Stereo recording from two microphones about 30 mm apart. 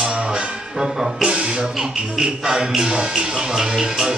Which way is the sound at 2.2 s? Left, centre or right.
Right.